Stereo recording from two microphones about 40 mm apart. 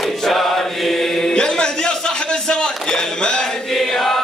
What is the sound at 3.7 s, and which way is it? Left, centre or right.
Chant, centre.